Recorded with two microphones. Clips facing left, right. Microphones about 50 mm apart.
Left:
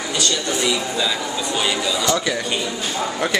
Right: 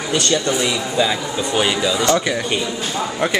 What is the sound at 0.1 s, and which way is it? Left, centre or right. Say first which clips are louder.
Speech: right 5 dB; right.